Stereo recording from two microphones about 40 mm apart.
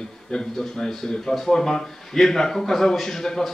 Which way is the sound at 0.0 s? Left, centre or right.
Centre.